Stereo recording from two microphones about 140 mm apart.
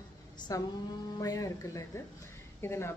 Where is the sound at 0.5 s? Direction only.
25° left (ahead or behind).